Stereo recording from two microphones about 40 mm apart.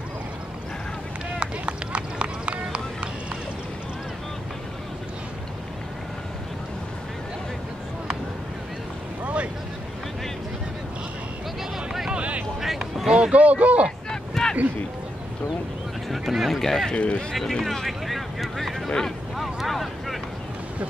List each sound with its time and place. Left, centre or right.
1.4 s run: right
9.2 s vehicle: right
12.1 s vehicle: right
12.5 s run: centre
13.3 s a sound: right
14.4 s a sound: centre
16.1 s speech: centre
16.6 s speech: centre
16.9 s speech: left
17.3 s vehicle: centre
18.9 s vehicle: centre
19.3 s vehicle: centre